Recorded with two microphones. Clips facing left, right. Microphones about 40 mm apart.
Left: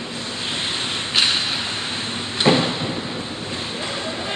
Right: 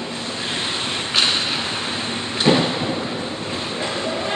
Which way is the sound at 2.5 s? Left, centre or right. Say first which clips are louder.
Even; left.